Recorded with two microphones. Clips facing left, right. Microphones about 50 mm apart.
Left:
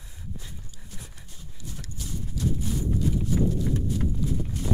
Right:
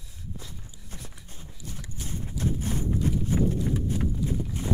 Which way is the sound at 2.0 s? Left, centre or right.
Right.